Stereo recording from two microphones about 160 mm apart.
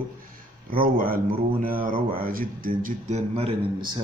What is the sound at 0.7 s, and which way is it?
Speech, 65° right (ahead or behind).